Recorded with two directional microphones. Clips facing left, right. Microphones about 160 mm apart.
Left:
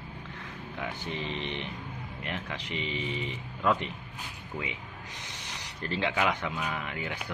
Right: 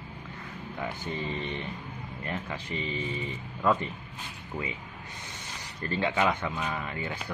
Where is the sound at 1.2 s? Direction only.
90° left.